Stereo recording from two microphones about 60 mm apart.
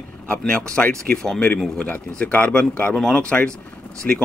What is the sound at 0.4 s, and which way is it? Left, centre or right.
Speech, centre.